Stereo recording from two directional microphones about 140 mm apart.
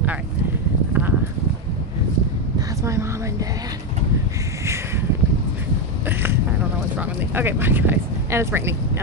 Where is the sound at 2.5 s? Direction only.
20° right (ahead or behind).